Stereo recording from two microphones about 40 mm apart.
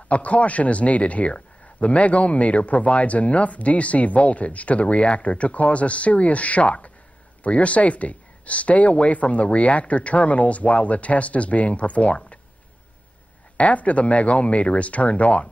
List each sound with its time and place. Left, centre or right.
0.1 s speech: left
13.6 s speech: left